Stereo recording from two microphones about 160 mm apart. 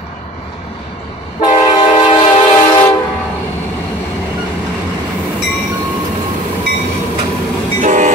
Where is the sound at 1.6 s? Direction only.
30° left (ahead or behind).